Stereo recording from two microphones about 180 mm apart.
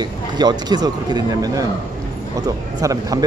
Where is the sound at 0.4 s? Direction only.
25° right (ahead or behind).